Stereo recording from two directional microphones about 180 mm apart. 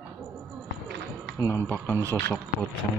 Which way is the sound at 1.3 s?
15° left (ahead or behind).